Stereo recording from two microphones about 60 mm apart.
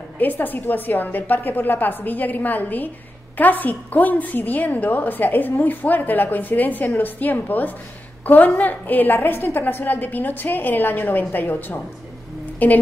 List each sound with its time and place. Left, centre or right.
0.2 s a woman's voice: left